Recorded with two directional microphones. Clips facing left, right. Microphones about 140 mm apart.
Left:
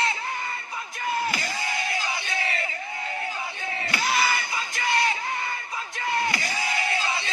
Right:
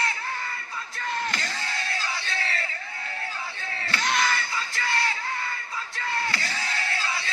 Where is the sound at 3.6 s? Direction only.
15° left (ahead or behind).